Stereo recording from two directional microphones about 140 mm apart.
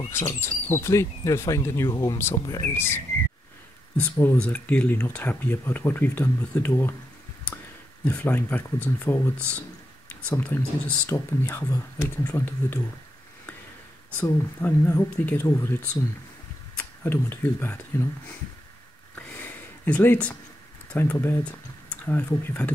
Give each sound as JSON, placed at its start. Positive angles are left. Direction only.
{"t": 0.1, "sound": "speech", "side_deg": 20}
{"t": 8.0, "sound": "speech", "side_deg": 10}
{"t": 14.2, "sound": "speech", "side_deg": 15}
{"t": 19.1, "sound": "a sound", "side_deg": 10}
{"t": 20.9, "sound": "speech", "side_deg": 15}